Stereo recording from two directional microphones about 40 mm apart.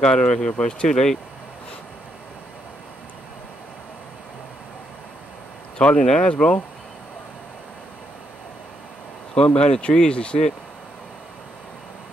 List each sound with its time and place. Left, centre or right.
0.0 s speech: centre
0.8 s speech: centre
5.8 s speech: left
9.6 s speech: left